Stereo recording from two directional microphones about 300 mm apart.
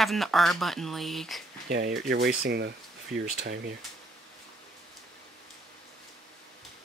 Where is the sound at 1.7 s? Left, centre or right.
Right.